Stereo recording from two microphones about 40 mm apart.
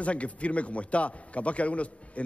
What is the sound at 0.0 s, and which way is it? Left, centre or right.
A man's voice, left.